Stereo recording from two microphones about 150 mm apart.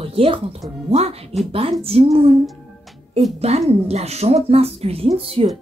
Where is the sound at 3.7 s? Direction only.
45° right (ahead or behind).